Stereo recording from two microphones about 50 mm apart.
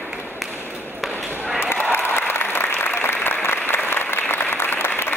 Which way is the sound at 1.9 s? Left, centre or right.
Left.